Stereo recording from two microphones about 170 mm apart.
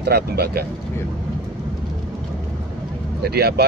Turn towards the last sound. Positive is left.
turn(degrees=-65)  # may be behind; listen again after turning